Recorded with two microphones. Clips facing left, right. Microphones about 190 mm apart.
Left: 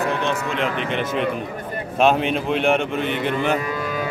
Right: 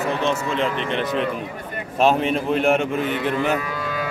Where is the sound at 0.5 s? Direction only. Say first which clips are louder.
Even; centre (ahead or behind).